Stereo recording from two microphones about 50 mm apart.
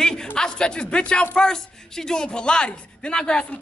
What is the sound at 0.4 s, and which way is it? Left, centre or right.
Speech, centre.